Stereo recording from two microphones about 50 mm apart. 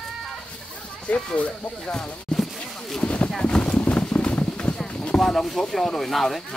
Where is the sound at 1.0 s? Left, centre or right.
Left.